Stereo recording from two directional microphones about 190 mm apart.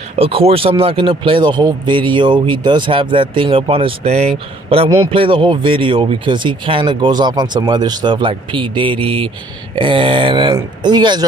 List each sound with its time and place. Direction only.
0.1 s speech: 30° right (ahead or behind)